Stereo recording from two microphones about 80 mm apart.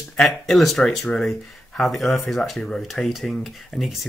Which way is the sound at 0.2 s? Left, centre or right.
Centre.